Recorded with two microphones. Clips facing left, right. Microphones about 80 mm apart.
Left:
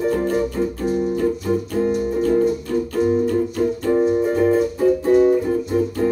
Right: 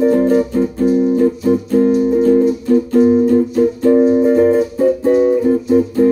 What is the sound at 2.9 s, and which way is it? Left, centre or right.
Music, centre.